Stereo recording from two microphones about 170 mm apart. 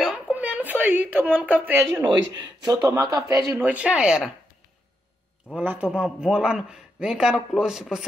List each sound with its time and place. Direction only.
0.0 s a sound: 5° right (ahead or behind)
2.1 s speech: 90° right
2.6 s speech: 20° right (ahead or behind)
3.5 s a man's voice: 5° right (ahead or behind)
5.6 s a man's voice: 10° right (ahead or behind)